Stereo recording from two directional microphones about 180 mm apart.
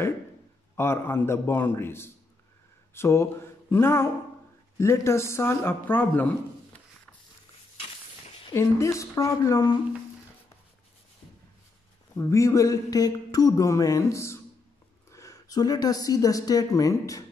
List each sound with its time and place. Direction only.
0.7 s speech: 15° left (ahead or behind)
8.5 s speech: 15° left (ahead or behind)
12.2 s speech: 15° left (ahead or behind)